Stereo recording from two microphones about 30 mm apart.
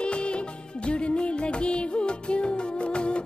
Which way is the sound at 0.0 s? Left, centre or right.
Left.